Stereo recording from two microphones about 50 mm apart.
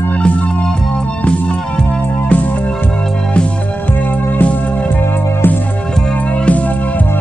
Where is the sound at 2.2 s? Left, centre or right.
Left.